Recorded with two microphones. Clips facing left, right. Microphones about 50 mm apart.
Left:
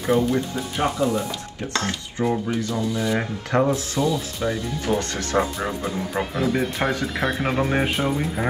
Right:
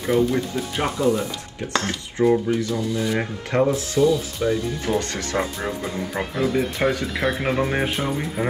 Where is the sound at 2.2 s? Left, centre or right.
Centre.